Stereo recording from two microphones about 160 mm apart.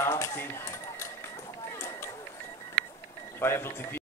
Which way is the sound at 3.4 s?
15° left (ahead or behind).